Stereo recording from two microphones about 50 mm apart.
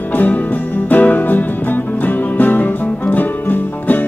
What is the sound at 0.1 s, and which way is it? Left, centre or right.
Music, left.